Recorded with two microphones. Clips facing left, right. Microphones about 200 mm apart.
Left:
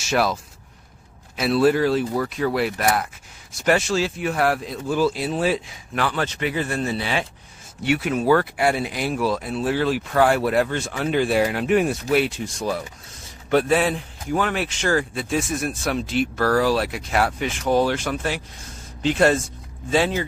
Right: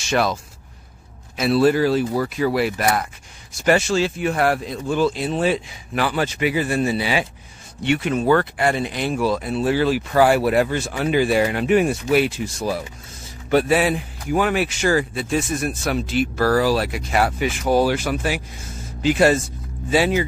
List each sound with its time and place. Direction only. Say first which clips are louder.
0.0 s speech: right 1 dB; 5° left (ahead or behind)
7.8 s speech: right 1 dB; 5° left (ahead or behind)